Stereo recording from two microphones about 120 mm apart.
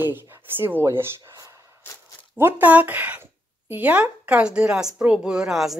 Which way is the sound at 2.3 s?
15° right (ahead or behind).